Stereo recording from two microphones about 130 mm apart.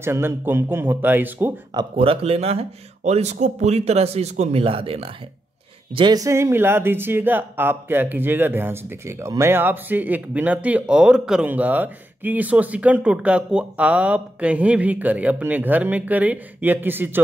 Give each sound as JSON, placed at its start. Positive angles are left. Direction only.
{"t": 0.0, "sound": "speech", "side_deg": -20}
{"t": 1.7, "sound": "speech", "side_deg": -40}
{"t": 5.9, "sound": "speech", "side_deg": -30}